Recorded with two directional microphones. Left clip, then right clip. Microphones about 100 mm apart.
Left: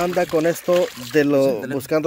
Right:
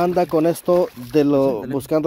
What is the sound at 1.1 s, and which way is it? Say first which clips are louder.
Speech: even; 25° right (ahead or behind).